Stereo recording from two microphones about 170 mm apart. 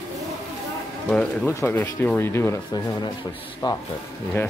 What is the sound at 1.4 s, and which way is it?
Speech, 15° left (ahead or behind).